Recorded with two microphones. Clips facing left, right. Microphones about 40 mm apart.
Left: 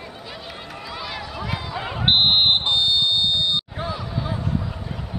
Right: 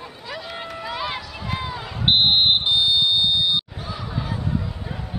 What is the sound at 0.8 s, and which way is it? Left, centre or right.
Run, right.